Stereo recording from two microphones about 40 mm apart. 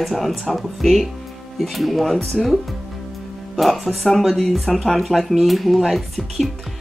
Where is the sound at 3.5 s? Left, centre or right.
Centre.